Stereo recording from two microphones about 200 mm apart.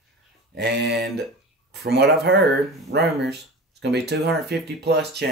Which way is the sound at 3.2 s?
55° right (ahead or behind).